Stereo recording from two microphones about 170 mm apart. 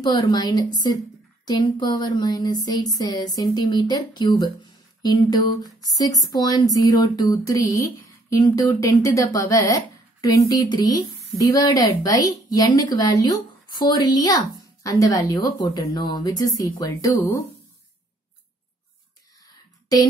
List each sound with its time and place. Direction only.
0.0 s speech: 25° left (ahead or behind)